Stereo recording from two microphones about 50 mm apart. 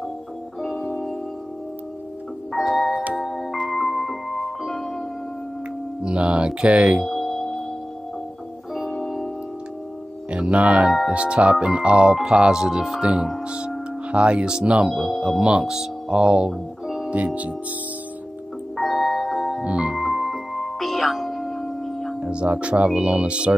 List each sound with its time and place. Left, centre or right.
0.6 s music: centre
2.5 s music: centre
6.0 s speech: right
7.1 s music: centre
10.3 s speech: right
14.9 s speech: centre
16.8 s music: centre
17.1 s speech: right
18.8 s music: centre
19.6 s music: right
20.0 s music: centre
22.2 s speech: right